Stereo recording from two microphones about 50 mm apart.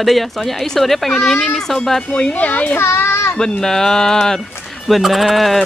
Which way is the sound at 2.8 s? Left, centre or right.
Left.